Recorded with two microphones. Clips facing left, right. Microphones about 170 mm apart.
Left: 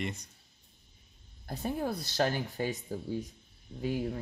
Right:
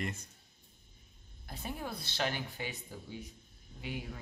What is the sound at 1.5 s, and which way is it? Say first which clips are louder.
Speech: left 8 dB; 40° left (ahead or behind).